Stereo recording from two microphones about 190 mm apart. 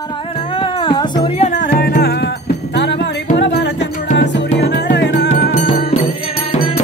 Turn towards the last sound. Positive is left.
turn(degrees=40)  # may be behind; listen again after turning